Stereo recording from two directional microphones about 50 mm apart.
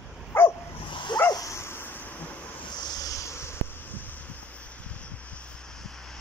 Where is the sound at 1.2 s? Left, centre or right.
Left.